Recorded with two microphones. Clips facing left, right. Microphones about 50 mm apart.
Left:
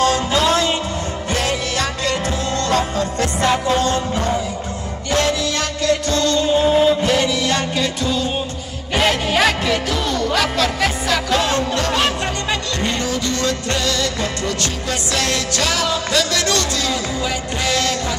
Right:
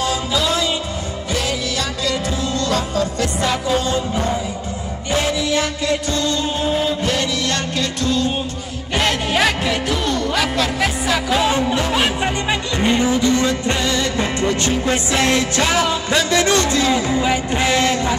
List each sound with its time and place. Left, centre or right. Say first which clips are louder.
0.0 s music: left 4 dB; left
2.7 s music: left 1 dB; left
5.1 s music: even; centre
6.6 s music: left 4 dB; centre; by 18.1 s right